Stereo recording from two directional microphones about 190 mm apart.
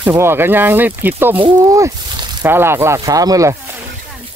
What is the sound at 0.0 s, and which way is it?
Speech, 15° right (ahead or behind).